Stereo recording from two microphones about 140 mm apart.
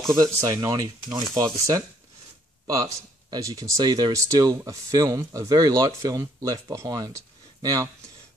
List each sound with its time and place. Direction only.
0.1 s speech: 25° right (ahead or behind)